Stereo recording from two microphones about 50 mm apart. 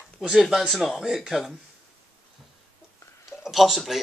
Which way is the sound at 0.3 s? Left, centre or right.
Centre.